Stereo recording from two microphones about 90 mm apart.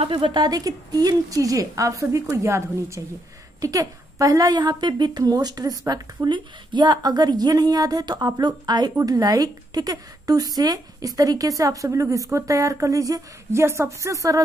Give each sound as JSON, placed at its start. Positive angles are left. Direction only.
{"t": 0.0, "sound": "a woman's voice", "side_deg": -70}